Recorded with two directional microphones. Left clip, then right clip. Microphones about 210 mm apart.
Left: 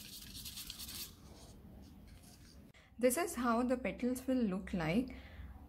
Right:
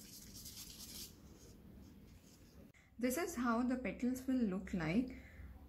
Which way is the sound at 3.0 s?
20° left (ahead or behind).